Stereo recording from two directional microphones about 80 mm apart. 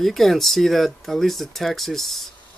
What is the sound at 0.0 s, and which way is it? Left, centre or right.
Speech, centre.